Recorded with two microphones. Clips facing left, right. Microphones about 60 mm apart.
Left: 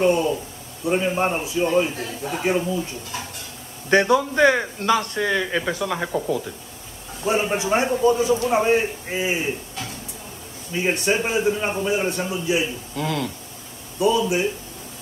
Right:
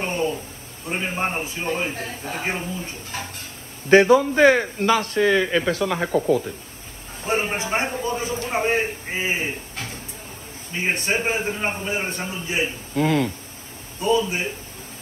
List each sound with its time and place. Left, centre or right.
0.0 s a man's voice: right
5.9 s speech: centre
7.2 s a man's voice: right